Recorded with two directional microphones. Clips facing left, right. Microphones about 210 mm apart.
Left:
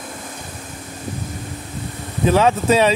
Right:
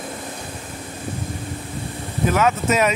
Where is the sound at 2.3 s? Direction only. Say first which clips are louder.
Left 4 dB; 30° left (ahead or behind).